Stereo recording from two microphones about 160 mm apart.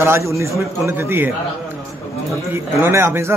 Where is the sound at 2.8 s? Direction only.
15° right (ahead or behind).